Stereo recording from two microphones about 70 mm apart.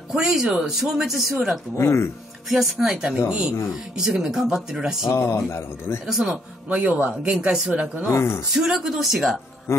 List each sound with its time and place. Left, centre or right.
0.1 s speech: centre
1.8 s speech: left
2.5 s speech: centre
5.0 s speech: left
6.0 s speech: centre
8.1 s speech: left
8.5 s speech: centre
9.7 s speech: left